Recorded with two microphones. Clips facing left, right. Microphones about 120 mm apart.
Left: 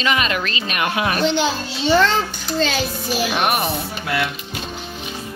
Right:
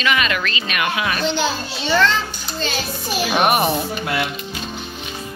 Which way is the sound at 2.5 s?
90° left.